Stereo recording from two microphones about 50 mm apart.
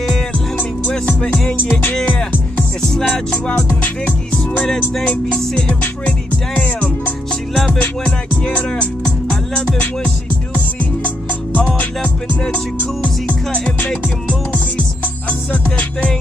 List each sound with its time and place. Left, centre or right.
0.6 s music: left
1.6 s music: left
2.9 s music: centre
5.8 s music: left